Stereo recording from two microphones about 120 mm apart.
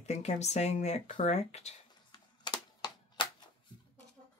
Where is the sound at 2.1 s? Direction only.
35° left (ahead or behind).